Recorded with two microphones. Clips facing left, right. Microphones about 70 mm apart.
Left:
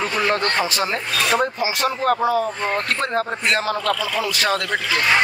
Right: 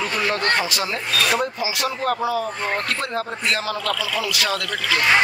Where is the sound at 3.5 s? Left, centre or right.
Left.